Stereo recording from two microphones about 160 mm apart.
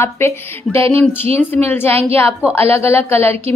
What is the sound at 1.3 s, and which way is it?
Speech, 40° right (ahead or behind).